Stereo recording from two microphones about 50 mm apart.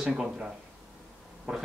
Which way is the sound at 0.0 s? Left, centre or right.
Centre.